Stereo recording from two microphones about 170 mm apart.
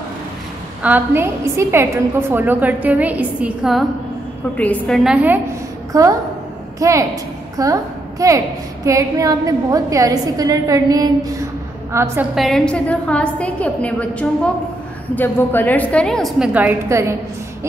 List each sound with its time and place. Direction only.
0.8 s a woman's voice: 10° right (ahead or behind)
4.6 s a woman's voice: 5° left (ahead or behind)
5.9 s a woman's voice: 20° right (ahead or behind)
12.4 s a woman's voice: centre (ahead or behind)